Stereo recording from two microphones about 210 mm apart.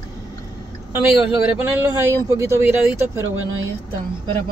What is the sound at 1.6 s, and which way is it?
Speech, 10° right (ahead or behind).